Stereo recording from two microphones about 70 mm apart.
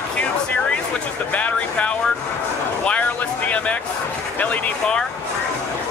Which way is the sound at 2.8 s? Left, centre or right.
Left.